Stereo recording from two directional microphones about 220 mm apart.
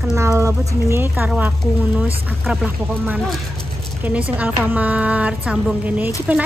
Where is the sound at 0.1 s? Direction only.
15° right (ahead or behind).